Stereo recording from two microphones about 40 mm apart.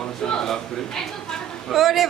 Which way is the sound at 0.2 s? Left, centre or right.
Centre.